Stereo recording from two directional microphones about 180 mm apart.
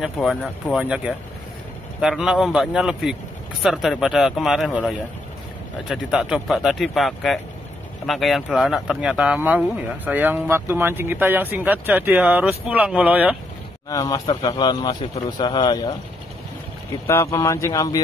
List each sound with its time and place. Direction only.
0.0 s speech: centre (ahead or behind)
13.8 s speech: 20° left (ahead or behind)
17.1 s speech: 15° left (ahead or behind)